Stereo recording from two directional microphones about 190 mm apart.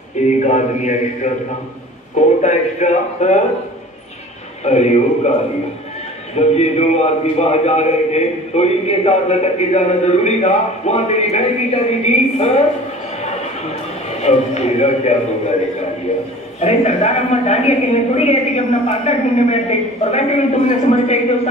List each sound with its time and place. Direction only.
0.4 s a man's voice: 40° left (ahead or behind)
2.4 s a man's voice: 35° left (ahead or behind)
4.6 s a man's voice: 35° left (ahead or behind)
6.3 s a man's voice: 35° left (ahead or behind)
14.2 s a man's voice: 35° left (ahead or behind)
16.5 s a man's voice: 35° left (ahead or behind)